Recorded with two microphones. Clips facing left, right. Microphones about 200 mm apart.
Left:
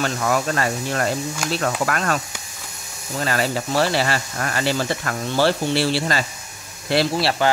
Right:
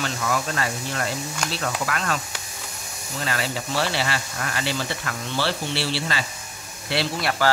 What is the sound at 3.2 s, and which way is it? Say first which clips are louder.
Speech: left 5 dB; 45° left (ahead or behind).